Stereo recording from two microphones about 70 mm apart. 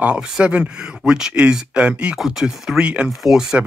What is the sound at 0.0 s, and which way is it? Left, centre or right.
Speech, centre.